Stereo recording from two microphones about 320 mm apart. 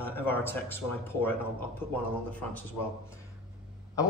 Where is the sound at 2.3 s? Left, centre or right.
Centre.